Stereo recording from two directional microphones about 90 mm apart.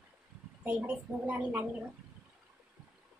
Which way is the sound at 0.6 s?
15° right (ahead or behind).